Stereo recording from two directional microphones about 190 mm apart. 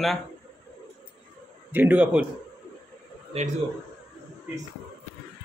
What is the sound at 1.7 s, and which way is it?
Speech, 10° right (ahead or behind).